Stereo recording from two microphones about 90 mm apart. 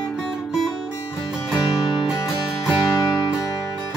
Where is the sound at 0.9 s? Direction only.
40° left (ahead or behind).